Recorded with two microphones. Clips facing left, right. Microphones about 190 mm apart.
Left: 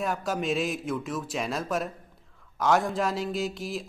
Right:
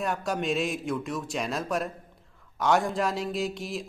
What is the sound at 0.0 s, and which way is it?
Speech, centre (ahead or behind).